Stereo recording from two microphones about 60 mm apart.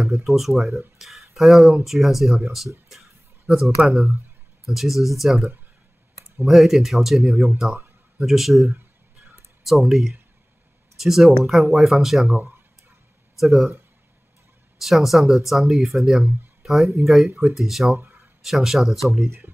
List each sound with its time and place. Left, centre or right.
0.0 s speech: centre
0.9 s a sound: centre
1.9 s speech: centre
9.7 s speech: centre
12.3 s speech: right
13.4 s speech: centre
14.8 s speech: centre